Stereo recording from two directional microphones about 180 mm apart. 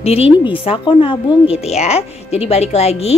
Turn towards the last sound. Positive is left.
turn(degrees=35)  # may be behind; listen again after turning